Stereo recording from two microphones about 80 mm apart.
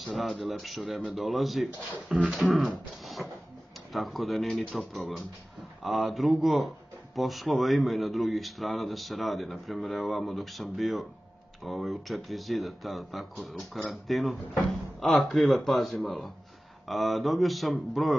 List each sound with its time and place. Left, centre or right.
0.0 s a man's voice: centre
3.9 s a man's voice: centre